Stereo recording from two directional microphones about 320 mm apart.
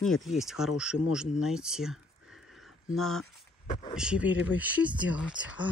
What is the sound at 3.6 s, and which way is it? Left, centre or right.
Speech, left.